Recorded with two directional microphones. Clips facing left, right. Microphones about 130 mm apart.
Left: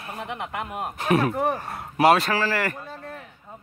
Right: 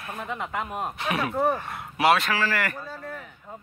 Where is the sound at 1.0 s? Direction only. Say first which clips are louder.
Left 5 dB; 40° left (ahead or behind).